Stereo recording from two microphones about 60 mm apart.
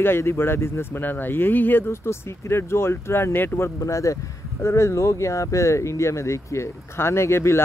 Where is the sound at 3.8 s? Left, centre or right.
Left.